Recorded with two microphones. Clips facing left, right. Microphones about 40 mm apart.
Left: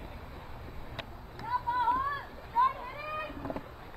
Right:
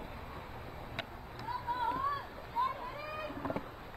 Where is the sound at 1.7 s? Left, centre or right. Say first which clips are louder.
Left 4 dB; centre.